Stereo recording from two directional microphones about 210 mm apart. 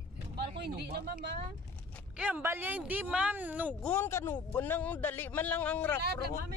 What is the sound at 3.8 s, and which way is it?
A man's voice, 10° left (ahead or behind).